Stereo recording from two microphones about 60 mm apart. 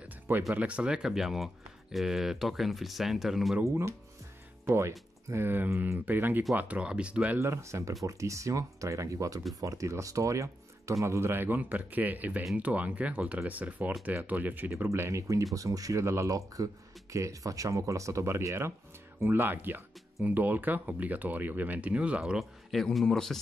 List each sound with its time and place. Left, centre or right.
0.6 s speech: right; by 3.5 s centre
3.6 s speech: right; by 7.3 s centre
7.3 s speech: right
14.9 s speech: right
15.5 s speech: right
16.0 s speech: right
19.2 s speech: right
22.4 s a man's voice: centre